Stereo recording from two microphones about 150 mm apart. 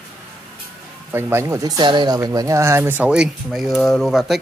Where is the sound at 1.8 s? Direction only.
30° right (ahead or behind); by 4.4 s centre (ahead or behind).